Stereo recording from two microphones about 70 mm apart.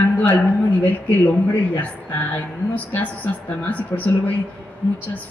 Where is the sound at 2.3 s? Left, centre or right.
Left.